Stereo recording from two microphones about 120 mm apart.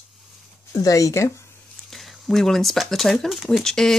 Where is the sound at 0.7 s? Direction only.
30° left (ahead or behind).